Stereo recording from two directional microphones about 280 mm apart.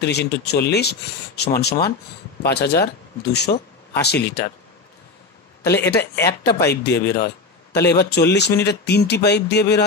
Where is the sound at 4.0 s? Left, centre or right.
Left.